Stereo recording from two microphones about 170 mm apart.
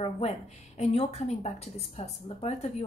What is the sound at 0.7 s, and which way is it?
A woman's voice, 40° left (ahead or behind).